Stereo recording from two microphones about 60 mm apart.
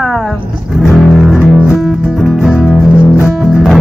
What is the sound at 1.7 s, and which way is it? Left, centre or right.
Music, centre.